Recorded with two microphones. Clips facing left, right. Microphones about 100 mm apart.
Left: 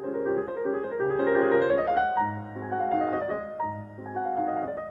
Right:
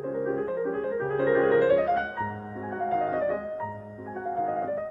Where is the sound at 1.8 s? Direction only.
5° left (ahead or behind).